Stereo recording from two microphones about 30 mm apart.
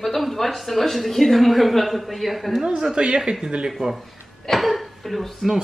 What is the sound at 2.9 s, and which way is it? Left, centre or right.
Speech, right.